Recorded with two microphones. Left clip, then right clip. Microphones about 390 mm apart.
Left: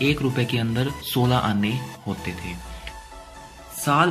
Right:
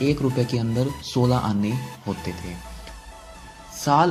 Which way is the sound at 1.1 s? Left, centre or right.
Centre.